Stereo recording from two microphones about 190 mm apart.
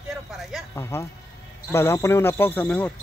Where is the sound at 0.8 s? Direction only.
15° left (ahead or behind).